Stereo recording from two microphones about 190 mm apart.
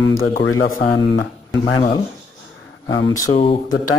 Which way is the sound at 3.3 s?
30° left (ahead or behind).